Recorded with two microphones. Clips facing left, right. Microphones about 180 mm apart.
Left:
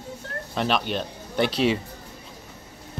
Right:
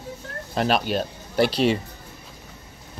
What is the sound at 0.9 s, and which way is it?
Speech, 5° right (ahead or behind).